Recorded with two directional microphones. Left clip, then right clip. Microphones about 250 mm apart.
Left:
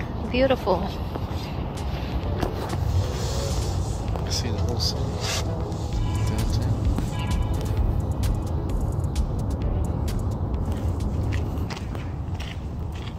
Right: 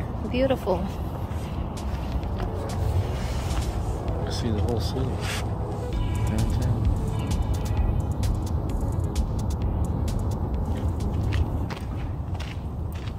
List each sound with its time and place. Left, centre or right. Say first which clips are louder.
0.3 s speech: left 3 dB; centre
4.3 s speech: even; right